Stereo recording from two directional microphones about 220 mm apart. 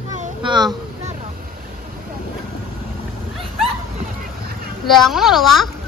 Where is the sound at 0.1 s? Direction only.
30° right (ahead or behind).